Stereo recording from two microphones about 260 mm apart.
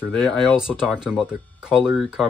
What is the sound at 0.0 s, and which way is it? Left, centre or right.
Speech, centre.